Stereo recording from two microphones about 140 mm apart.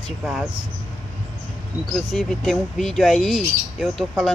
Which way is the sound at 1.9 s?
Centre (ahead or behind).